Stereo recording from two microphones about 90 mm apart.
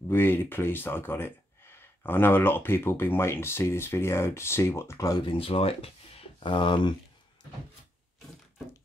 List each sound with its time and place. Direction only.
0.1 s speech: 25° left (ahead or behind)
5.2 s speech: 85° left; by 6.9 s 60° left (ahead or behind)